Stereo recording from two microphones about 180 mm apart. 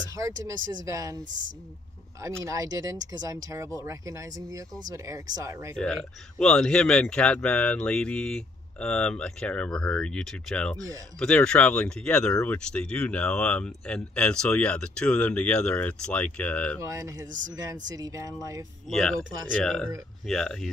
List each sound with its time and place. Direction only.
0.1 s speech: 20° right (ahead or behind)
2.4 s speech: 20° right (ahead or behind)
6.3 s speech: 5° left (ahead or behind)
16.8 s speech: 20° right (ahead or behind)
18.9 s speech: centre (ahead or behind)